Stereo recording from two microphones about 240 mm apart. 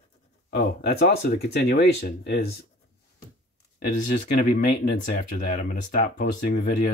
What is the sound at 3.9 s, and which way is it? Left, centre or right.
Speech, left.